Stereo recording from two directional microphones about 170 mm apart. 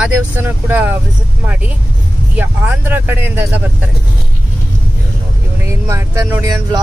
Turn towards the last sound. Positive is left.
turn(degrees=-20)  # may be behind; listen again after turning